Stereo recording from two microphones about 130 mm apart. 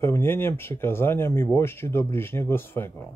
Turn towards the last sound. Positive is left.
turn(degrees=15)  # may be behind; listen again after turning